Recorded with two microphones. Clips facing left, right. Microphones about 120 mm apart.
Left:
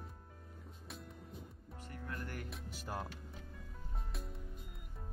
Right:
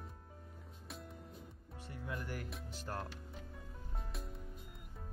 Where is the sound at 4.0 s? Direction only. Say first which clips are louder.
Even; centre (ahead or behind).